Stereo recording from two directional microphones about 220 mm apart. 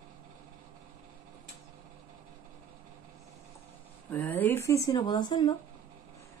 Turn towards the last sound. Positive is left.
turn(degrees=20)  # may be behind; listen again after turning